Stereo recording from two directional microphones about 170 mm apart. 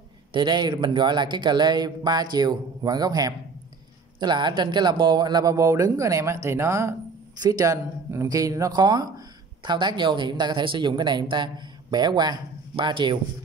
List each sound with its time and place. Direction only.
0.3 s speech: 25° right (ahead or behind)